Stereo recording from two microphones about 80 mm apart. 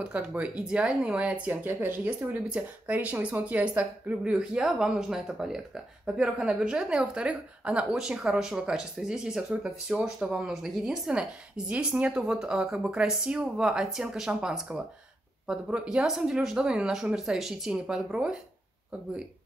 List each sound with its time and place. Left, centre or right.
0.1 s a woman's voice: centre